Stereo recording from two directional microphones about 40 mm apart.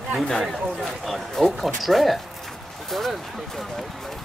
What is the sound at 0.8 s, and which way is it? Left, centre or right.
Speech, centre.